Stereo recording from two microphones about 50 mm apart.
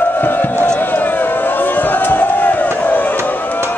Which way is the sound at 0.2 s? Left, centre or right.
Left.